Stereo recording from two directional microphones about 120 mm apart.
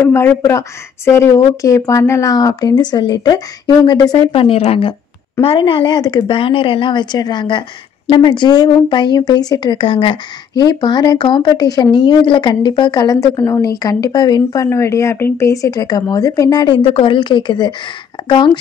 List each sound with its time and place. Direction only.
0.0 s speech: 20° left (ahead or behind)
4.3 s a woman's voice: 45° left (ahead or behind)
5.9 s speech: 35° left (ahead or behind)
9.8 s a woman's voice: 50° left (ahead or behind)
10.6 s speech: 35° left (ahead or behind)
16.8 s speech: 50° left (ahead or behind)